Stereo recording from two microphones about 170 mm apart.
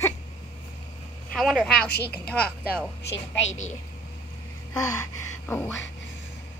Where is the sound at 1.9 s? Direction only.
75° left (ahead or behind).